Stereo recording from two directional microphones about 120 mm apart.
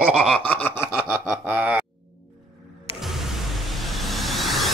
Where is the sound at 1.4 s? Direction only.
15° right (ahead or behind).